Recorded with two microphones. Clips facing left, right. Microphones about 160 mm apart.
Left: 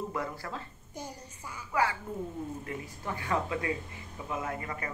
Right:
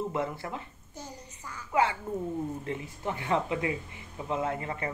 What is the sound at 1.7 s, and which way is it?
Speech, 25° right (ahead or behind).